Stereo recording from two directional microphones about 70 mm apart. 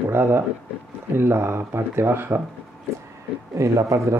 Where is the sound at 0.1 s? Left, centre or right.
Right.